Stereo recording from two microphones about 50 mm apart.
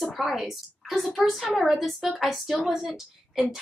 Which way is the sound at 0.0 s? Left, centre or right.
Centre.